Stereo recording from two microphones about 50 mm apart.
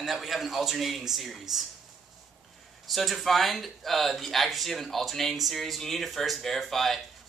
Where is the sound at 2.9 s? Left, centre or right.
Centre.